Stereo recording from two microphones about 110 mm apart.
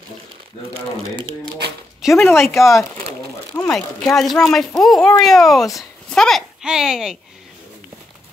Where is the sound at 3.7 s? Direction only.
5° left (ahead or behind).